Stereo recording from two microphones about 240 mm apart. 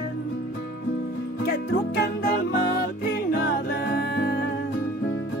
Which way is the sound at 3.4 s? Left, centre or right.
Left.